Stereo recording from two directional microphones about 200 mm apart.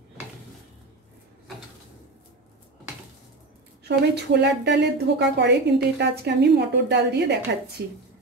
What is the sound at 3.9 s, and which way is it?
A woman's voice, 55° right (ahead or behind).